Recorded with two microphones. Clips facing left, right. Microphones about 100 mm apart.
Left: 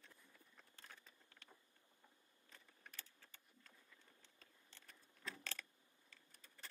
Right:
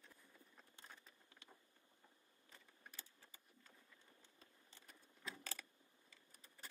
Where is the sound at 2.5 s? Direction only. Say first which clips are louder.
Even; 15° right (ahead or behind).